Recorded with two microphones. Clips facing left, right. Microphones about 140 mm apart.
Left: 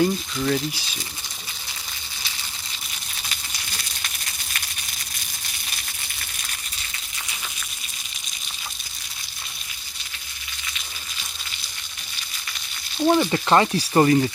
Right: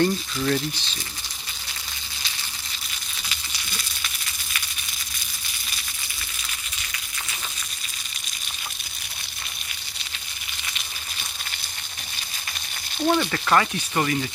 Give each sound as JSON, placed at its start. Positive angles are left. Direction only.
{"t": 0.0, "sound": "speech", "side_deg": 5}
{"t": 13.0, "sound": "speech", "side_deg": 15}